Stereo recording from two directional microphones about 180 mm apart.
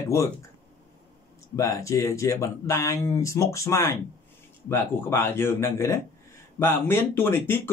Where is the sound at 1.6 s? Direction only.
15° left (ahead or behind).